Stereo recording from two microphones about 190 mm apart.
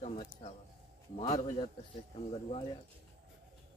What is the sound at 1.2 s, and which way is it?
Speech, 20° left (ahead or behind).